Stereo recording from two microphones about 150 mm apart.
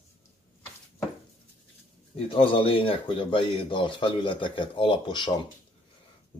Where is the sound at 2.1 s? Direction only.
40° left (ahead or behind).